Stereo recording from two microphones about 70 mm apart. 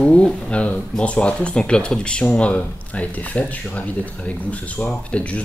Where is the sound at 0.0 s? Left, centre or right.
Centre.